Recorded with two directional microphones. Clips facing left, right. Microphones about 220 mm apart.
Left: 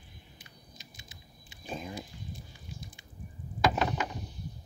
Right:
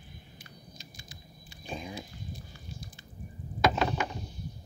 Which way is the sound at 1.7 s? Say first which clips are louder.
Even; centre (ahead or behind).